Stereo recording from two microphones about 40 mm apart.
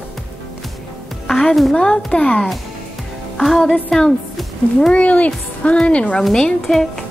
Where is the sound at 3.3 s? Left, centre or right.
Centre.